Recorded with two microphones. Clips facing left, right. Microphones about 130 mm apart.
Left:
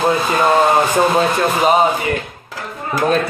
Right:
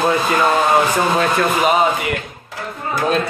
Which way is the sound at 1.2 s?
30° left (ahead or behind).